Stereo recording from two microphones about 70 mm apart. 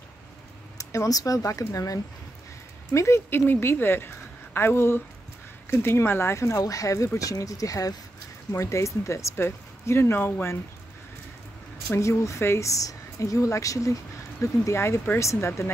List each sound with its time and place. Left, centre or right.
0.7 s speech: left
2.9 s a woman's voice: left
8.5 s a woman's voice: left
11.9 s a woman's voice: left